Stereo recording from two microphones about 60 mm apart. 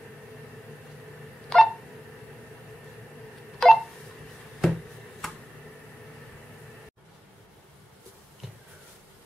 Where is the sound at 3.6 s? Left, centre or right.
Centre.